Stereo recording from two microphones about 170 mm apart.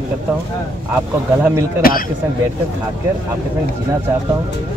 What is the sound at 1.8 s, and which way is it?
Speech, 60° left (ahead or behind).